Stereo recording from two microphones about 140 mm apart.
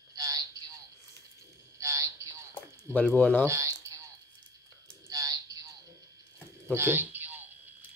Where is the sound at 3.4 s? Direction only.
20° right (ahead or behind).